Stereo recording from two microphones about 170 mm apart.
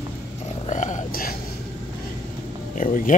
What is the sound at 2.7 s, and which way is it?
Speech, 50° left (ahead or behind).